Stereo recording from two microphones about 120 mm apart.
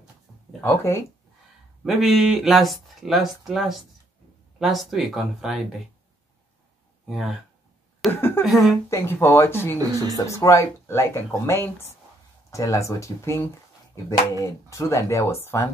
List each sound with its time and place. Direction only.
0.6 s speech: 20° left (ahead or behind)
1.8 s speech: centre (ahead or behind)
7.1 s speech: centre (ahead or behind)
8.9 s speech: 20° left (ahead or behind)